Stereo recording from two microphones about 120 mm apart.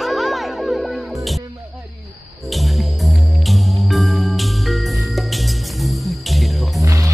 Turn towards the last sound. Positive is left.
turn(degrees=-25)  # may be behind; listen again after turning